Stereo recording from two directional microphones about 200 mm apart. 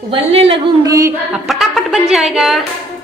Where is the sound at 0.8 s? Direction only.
15° right (ahead or behind).